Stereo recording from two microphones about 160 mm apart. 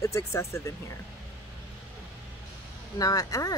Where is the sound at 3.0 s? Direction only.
20° left (ahead or behind).